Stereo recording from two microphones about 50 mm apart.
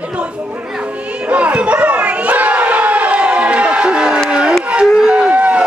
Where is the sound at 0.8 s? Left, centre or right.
Right.